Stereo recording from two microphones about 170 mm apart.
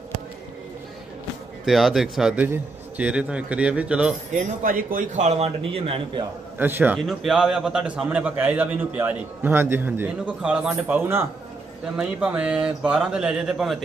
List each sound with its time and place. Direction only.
1.7 s a man's voice: centre (ahead or behind)
4.6 s a man's voice: 55° right (ahead or behind); by 6.2 s 35° right (ahead or behind)
6.6 s a man's voice: 10° right (ahead or behind)